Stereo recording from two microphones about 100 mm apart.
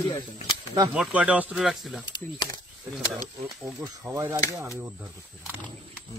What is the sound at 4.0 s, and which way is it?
Speech, 25° right (ahead or behind).